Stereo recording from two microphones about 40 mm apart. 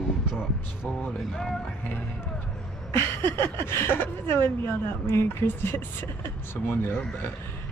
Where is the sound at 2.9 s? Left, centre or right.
Left.